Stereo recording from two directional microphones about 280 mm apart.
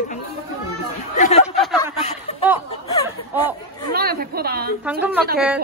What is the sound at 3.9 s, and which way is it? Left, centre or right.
Speech, right.